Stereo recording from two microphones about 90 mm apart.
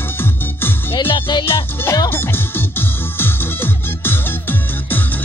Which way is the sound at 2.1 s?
25° left (ahead or behind).